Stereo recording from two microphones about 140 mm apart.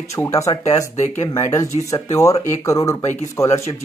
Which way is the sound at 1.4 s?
20° left (ahead or behind).